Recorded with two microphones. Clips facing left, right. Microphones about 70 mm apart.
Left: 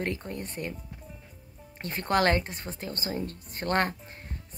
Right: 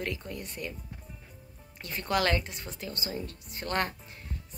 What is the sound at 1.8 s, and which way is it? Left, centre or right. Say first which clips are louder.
Speech: left 3 dB; left.